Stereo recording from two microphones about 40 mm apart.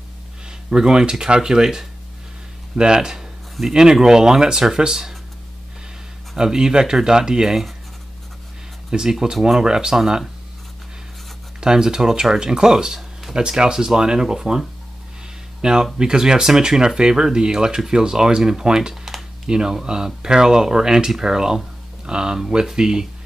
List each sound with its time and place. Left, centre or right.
0.5 s speech: centre
6.3 s speech: centre
9.1 s speech: centre
11.6 s speech: centre
15.6 s speech: centre